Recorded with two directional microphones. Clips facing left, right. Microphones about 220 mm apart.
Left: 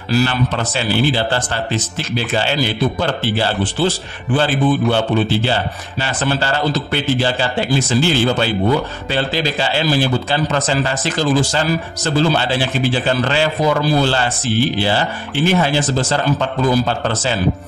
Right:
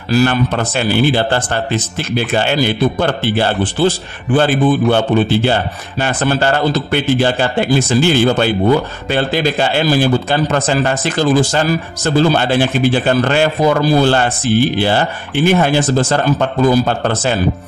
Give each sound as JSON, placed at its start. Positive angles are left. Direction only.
{"t": 0.1, "sound": "a man's voice", "side_deg": -50}
{"t": 4.9, "sound": "a man's voice", "side_deg": -55}